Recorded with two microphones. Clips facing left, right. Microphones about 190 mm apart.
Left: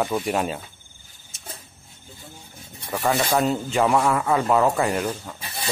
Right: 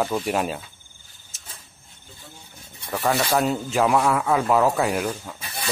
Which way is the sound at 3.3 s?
Centre (ahead or behind).